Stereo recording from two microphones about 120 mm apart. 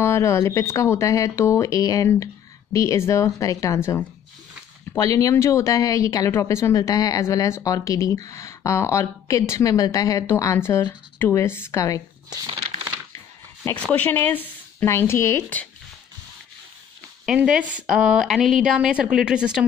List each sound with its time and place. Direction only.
0.0 s speech: 20° left (ahead or behind)
13.8 s speech: 15° left (ahead or behind)
17.6 s a woman's voice: 10° right (ahead or behind)